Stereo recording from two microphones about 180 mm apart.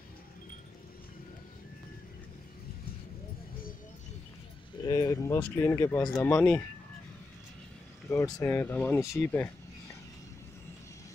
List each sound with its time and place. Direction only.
4.8 s speech: 20° left (ahead or behind)
8.1 s speech: 15° left (ahead or behind)